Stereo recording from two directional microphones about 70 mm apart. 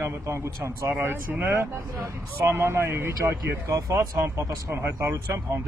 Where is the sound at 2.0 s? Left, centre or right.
Right.